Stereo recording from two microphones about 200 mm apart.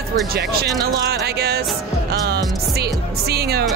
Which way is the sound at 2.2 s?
55° right (ahead or behind).